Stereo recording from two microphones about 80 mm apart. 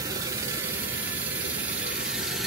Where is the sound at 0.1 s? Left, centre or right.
Right.